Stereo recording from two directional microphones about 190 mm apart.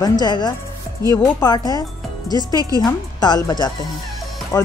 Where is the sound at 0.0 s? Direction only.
20° left (ahead or behind).